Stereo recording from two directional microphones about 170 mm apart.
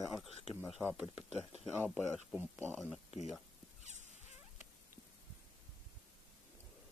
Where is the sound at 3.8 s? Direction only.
45° right (ahead or behind).